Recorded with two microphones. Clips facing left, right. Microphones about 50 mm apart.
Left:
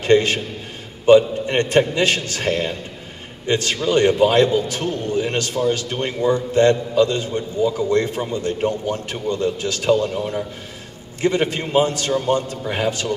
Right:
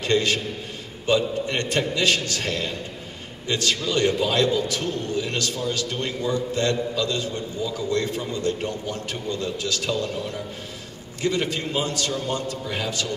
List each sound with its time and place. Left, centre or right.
0.0 s a man's voice: left